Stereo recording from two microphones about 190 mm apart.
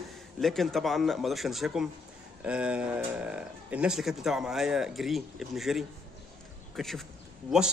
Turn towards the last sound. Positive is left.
turn(degrees=0)  # may be behind; listen again after turning